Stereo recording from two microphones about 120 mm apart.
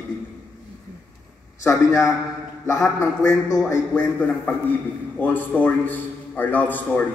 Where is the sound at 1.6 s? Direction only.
25° left (ahead or behind).